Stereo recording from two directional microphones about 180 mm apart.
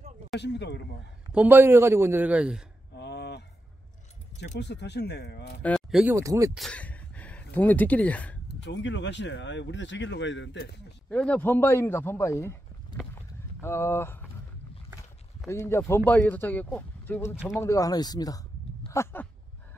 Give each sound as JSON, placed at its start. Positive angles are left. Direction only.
{"t": 0.4, "sound": "speech", "side_deg": 75}
{"t": 1.3, "sound": "a man's voice", "side_deg": -10}
{"t": 3.0, "sound": "a sound", "side_deg": 70}
{"t": 4.6, "sound": "speech", "side_deg": 70}
{"t": 5.6, "sound": "speech", "side_deg": 0}
{"t": 6.1, "sound": "a man's voice", "side_deg": -15}
{"t": 6.5, "sound": "speech", "side_deg": 5}
{"t": 8.5, "sound": "speech", "side_deg": 75}
{"t": 11.1, "sound": "speech", "side_deg": 5}
{"t": 15.4, "sound": "speech", "side_deg": 15}
{"t": 18.9, "sound": "a sound", "side_deg": 15}